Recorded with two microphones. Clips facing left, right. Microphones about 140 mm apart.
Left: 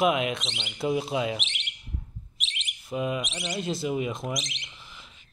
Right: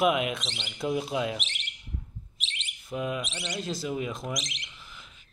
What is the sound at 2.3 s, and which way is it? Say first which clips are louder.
Bird: left 2 dB; 30° right (ahead or behind).